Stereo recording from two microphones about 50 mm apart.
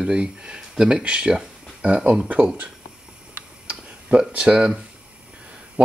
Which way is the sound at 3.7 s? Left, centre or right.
Right.